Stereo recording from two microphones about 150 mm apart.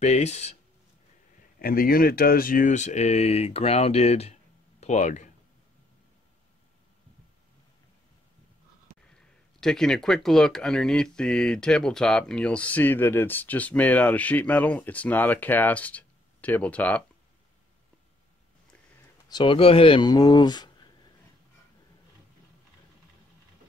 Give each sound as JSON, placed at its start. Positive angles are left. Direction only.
{"t": 0.0, "sound": "speech", "side_deg": 50}
{"t": 1.6, "sound": "speech", "side_deg": 75}
{"t": 9.1, "sound": "speech", "side_deg": 5}
{"t": 19.2, "sound": "speech", "side_deg": 35}